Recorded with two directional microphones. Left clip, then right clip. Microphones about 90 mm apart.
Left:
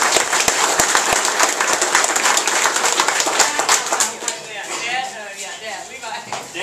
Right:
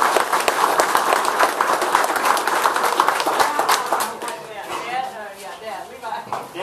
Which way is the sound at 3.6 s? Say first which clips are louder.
Left 1 dB; 20° left (ahead or behind).